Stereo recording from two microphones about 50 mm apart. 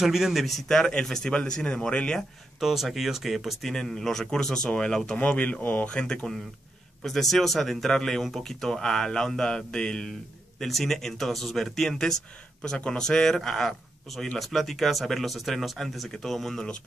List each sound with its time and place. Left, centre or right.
0.0 s speech: centre
2.6 s speech: centre
3.7 s speech: centre
5.2 s speech: left
5.9 s speech: left
7.0 s speech: centre
10.6 s speech: centre
12.6 s speech: centre